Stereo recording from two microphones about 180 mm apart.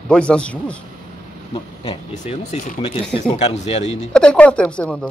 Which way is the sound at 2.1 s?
40° left (ahead or behind).